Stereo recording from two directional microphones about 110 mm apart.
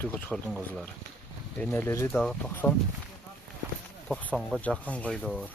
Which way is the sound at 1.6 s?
20° left (ahead or behind).